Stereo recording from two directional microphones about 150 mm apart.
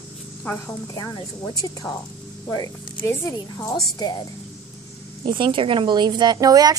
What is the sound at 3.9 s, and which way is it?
Speech, 25° left (ahead or behind).